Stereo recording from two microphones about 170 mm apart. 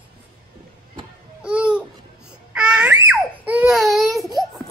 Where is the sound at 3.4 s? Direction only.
5° right (ahead or behind).